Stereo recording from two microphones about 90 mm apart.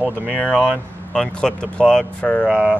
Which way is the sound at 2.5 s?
10° right (ahead or behind).